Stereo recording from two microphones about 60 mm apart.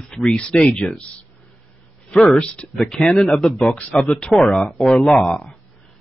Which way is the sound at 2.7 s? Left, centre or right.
Centre.